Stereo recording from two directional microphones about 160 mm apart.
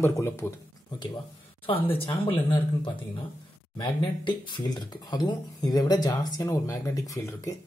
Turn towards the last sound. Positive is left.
turn(degrees=20)  # may be behind; listen again after turning